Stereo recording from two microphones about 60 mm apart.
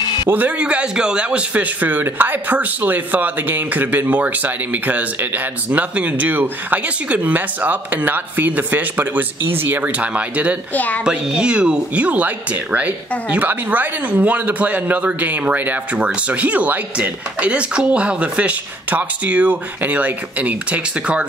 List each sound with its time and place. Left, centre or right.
0.3 s speech: right
10.7 s a woman's voice: left
11.1 s speech: centre
13.3 s speech: right